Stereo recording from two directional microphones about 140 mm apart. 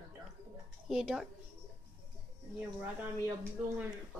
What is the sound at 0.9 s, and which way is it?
Speech, centre (ahead or behind).